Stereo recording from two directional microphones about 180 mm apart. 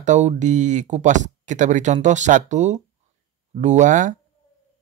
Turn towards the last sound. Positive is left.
turn(degrees=-45)  # may be behind; listen again after turning